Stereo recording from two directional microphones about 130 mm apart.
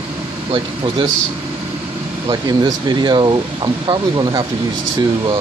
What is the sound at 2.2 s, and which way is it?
Speech, 35° right (ahead or behind).